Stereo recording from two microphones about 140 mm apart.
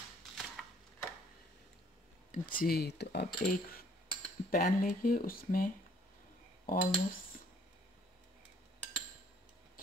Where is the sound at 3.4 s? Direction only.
80° left.